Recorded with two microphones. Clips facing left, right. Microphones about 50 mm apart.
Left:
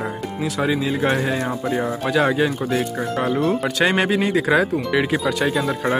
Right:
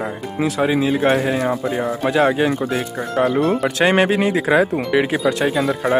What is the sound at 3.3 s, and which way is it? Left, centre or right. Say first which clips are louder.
Speech: right 2 dB; centre.